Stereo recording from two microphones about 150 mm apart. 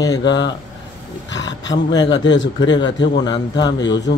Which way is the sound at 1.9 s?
30° left (ahead or behind).